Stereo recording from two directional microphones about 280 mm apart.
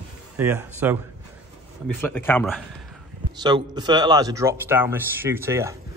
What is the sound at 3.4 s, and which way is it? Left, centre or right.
Speech, centre.